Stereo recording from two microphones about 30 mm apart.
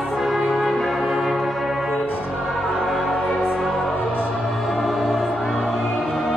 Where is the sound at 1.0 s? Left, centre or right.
Centre.